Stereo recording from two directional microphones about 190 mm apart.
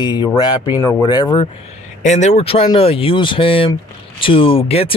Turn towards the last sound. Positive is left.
turn(degrees=30)  # may be behind; listen again after turning